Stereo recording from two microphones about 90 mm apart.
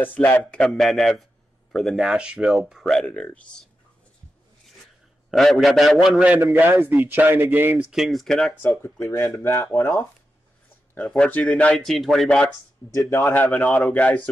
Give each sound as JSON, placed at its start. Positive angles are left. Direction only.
{"t": 0.0, "sound": "speech", "side_deg": 20}
{"t": 5.3, "sound": "speech", "side_deg": 0}
{"t": 6.2, "sound": "a man's voice", "side_deg": -20}
{"t": 7.9, "sound": "speech", "side_deg": 0}
{"t": 9.4, "sound": "speech", "side_deg": 25}
{"t": 11.1, "sound": "speech", "side_deg": 15}
{"t": 12.9, "sound": "a man's voice", "side_deg": 35}
{"t": 13.2, "sound": "speech", "side_deg": 20}